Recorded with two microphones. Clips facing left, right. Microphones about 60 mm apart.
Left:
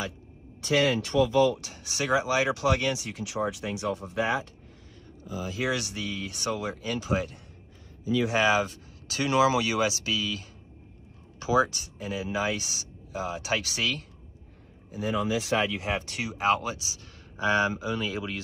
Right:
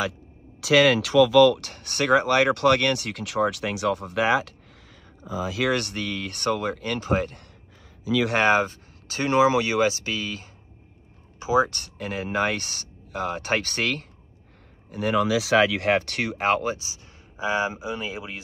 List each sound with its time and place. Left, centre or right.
0.6 s speech: right
5.7 s speech: right
8.1 s speech: right
8.4 s speech: right
11.7 s speech: right
14.9 s speech: right
17.4 s speech: centre